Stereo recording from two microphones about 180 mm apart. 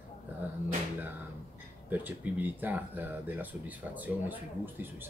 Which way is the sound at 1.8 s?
10° right (ahead or behind).